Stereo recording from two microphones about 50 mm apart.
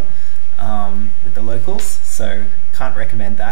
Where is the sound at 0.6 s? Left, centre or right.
Centre.